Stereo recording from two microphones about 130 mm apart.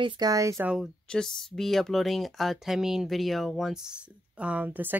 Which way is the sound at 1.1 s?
5° left (ahead or behind).